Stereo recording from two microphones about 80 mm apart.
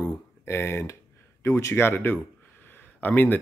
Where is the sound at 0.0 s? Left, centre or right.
Left.